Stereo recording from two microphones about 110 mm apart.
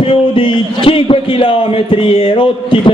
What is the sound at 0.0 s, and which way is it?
A man's voice, 60° left (ahead or behind).